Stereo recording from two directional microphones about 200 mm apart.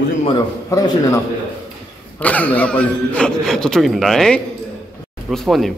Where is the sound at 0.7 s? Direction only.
15° left (ahead or behind).